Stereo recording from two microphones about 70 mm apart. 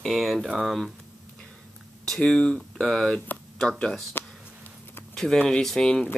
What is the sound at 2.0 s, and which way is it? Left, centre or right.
Speech, centre.